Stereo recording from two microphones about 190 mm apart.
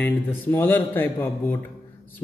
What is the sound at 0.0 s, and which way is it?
A man's voice, 10° left (ahead or behind).